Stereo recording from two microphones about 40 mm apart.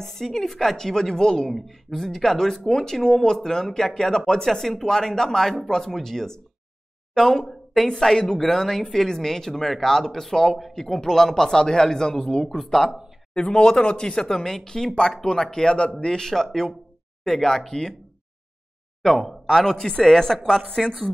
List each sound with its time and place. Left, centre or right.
0.0 s a woman's voice: centre
7.4 s a woman's voice: centre
12.4 s a woman's voice: centre
13.3 s a woman's voice: left
19.0 s a woman's voice: centre
20.8 s speech: centre